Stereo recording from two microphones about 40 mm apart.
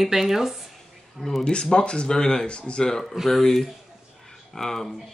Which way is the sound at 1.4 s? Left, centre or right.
Left.